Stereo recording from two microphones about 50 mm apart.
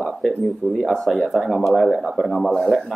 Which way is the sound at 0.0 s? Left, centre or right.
Centre.